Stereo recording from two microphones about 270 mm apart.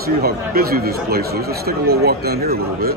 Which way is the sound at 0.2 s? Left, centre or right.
Right.